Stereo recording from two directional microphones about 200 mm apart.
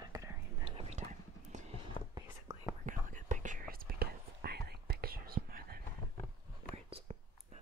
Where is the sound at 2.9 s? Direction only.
40° right (ahead or behind).